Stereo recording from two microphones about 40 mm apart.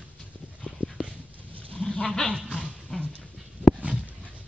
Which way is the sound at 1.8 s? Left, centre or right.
Left.